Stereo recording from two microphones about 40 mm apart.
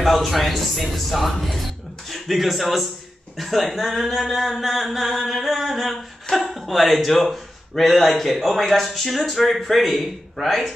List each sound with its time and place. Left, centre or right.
0.0 s a man's voice: centre
6.3 s speech: centre
6.6 s a man's voice: centre